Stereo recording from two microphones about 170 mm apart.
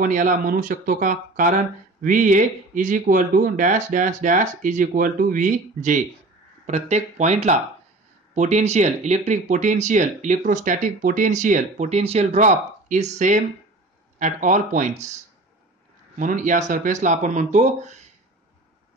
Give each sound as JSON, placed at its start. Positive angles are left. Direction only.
{"t": 0.0, "sound": "speech", "side_deg": -50}
{"t": 16.2, "sound": "speech", "side_deg": -50}